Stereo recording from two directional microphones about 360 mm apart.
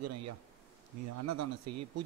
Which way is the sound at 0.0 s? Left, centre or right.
Right.